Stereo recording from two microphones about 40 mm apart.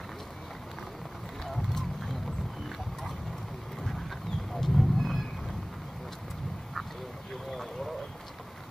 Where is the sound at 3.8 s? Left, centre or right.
Centre.